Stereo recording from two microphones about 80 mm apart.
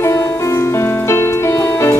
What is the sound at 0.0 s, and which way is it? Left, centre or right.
Music, left.